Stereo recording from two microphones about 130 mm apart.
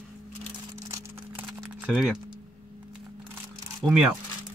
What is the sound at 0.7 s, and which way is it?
Music, 25° right (ahead or behind).